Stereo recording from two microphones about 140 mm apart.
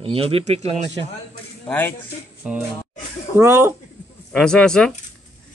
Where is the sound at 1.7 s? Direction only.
10° left (ahead or behind).